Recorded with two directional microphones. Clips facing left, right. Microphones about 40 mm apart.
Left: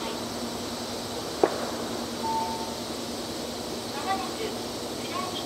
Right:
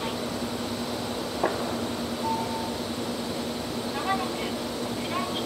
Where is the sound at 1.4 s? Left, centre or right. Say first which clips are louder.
Left 3 dB; right.